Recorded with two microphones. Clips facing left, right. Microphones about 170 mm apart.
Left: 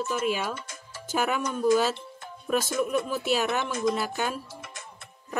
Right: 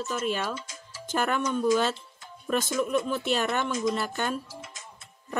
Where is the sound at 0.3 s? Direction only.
5° left (ahead or behind).